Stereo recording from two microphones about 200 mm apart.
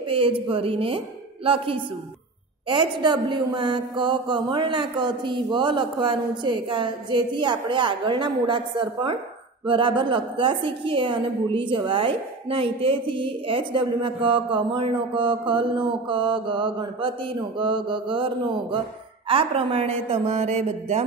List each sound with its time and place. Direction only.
0.1 s a woman's voice: 25° right (ahead or behind)